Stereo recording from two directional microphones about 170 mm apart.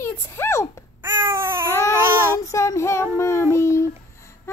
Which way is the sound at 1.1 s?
25° right (ahead or behind).